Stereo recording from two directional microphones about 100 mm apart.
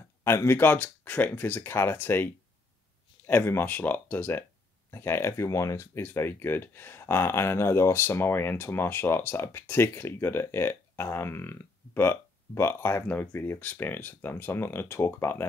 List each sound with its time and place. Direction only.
0.2 s speech: 25° left (ahead or behind)